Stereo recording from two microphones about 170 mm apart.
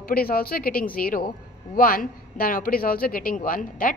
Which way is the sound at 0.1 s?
60° left (ahead or behind).